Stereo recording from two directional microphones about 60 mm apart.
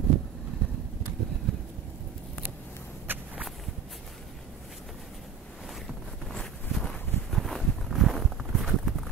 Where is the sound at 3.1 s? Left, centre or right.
Right.